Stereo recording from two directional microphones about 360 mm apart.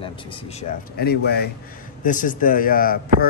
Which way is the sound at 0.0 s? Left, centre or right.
Centre.